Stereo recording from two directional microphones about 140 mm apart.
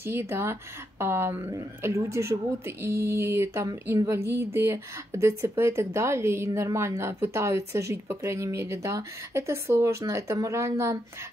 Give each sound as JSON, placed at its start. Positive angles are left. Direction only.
{"t": 0.0, "sound": "speech", "side_deg": -20}